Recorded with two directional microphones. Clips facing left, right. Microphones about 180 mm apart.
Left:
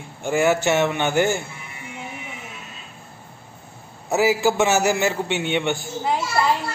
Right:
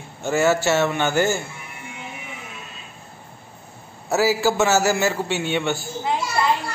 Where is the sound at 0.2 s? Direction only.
15° left (ahead or behind).